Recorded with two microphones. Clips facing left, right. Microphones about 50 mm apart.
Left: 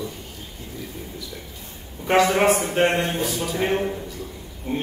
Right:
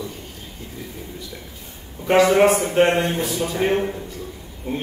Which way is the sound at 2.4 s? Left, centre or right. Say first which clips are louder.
Right 3 dB; centre.